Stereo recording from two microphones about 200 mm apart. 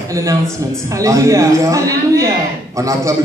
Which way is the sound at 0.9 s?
15° right (ahead or behind).